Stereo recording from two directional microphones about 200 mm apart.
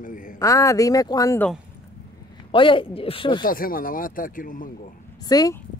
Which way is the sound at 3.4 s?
45° left (ahead or behind).